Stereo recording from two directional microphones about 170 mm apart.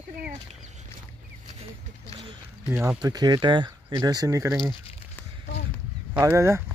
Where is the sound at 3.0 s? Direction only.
25° right (ahead or behind).